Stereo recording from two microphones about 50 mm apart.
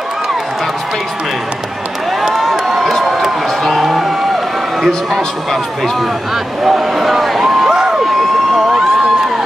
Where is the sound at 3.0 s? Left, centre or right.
Centre.